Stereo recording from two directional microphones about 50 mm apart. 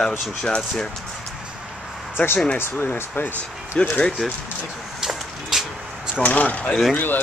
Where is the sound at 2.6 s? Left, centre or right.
Left.